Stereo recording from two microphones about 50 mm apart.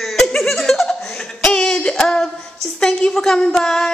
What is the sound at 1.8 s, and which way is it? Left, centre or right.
Speech, centre.